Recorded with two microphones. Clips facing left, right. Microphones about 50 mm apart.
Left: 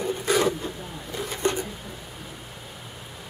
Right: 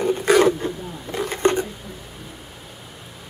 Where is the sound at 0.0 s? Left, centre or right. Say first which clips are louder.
Right 7 dB; right.